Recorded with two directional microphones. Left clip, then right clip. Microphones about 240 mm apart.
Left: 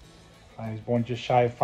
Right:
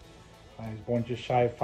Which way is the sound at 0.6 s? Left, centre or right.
Left.